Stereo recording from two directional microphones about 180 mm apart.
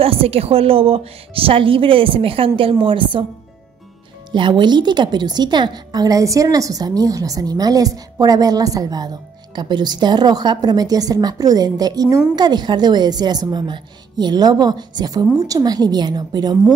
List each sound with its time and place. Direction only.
0.0 s a woman's voice: 30° right (ahead or behind)
4.3 s a woman's voice: 25° right (ahead or behind)